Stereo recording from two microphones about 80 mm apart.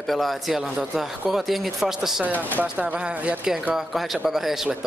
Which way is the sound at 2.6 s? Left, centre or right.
Right.